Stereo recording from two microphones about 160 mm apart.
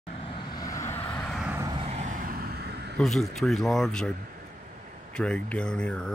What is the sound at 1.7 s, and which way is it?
Vehicle, 40° right (ahead or behind).